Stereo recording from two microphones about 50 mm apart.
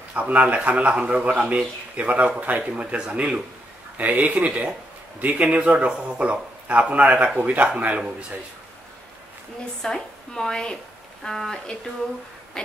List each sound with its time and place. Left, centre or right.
0.1 s a man's voice: right
9.8 s a woman's voice: centre